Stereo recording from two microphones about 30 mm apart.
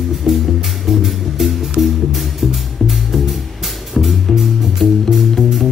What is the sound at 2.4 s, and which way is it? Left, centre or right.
Music, centre.